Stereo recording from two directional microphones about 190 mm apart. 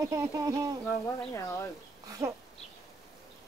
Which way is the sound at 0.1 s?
15° right (ahead or behind).